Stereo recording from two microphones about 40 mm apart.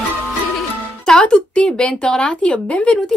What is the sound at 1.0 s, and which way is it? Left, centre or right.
Music, centre.